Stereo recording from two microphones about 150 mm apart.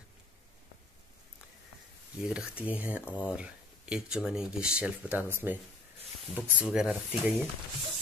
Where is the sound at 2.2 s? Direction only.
5° right (ahead or behind).